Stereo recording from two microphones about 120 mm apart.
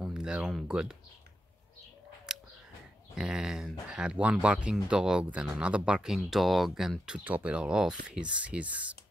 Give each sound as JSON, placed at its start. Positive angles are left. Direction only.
{"t": 0.0, "sound": "speech", "side_deg": -5}
{"t": 3.2, "sound": "speech", "side_deg": -5}